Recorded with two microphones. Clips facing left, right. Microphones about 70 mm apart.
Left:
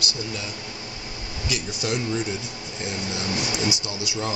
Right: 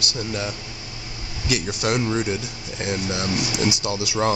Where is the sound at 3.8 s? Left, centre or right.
Right.